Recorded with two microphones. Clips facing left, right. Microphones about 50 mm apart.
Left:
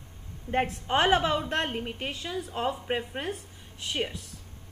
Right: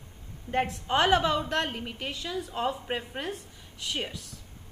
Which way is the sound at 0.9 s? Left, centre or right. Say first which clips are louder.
Even; left.